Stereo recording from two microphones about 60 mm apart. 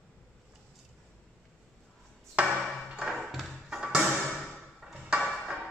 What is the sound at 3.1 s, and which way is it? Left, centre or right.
Music, centre.